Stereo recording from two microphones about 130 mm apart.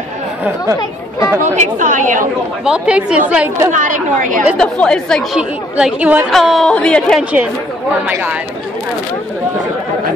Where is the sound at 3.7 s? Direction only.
80° right.